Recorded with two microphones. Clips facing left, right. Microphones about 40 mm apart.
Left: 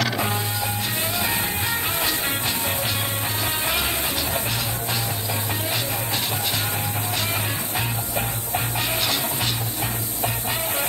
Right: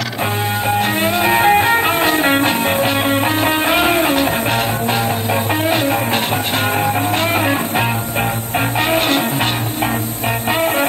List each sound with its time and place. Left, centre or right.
0.7 s music: right